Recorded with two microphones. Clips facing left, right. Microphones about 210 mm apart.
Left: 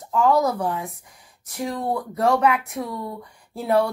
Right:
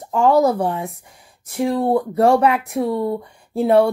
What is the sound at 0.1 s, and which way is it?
A woman's voice, 25° right (ahead or behind).